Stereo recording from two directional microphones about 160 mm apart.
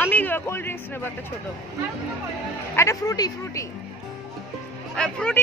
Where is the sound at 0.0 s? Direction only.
10° left (ahead or behind).